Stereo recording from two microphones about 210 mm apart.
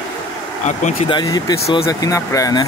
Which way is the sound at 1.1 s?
20° left (ahead or behind).